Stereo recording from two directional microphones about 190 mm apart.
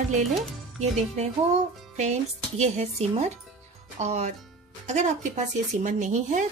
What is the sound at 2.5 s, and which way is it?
Speech, 35° right (ahead or behind).